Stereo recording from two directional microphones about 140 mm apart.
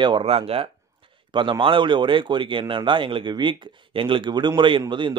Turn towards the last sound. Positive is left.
turn(degrees=-35)  # may be behind; listen again after turning